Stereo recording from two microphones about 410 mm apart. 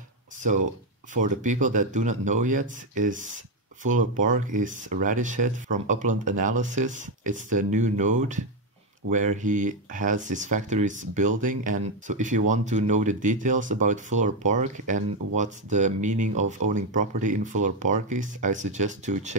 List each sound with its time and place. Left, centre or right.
1.1 s speech: centre